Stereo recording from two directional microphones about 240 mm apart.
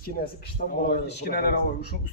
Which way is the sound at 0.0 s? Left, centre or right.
Left.